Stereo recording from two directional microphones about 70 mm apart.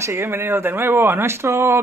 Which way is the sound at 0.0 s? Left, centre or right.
Right.